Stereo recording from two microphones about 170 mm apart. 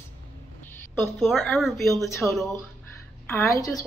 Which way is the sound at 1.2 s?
Centre (ahead or behind).